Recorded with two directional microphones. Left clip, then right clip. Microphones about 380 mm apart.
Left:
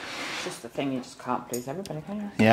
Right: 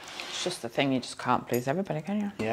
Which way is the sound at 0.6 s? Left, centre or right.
Right.